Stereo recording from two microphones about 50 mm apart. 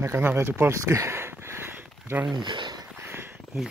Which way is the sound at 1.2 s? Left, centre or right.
Right.